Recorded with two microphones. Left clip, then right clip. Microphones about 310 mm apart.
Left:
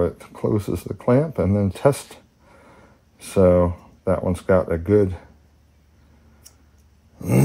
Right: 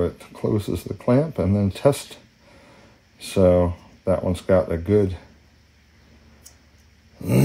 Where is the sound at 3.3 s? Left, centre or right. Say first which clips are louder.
Left 1 dB; centre.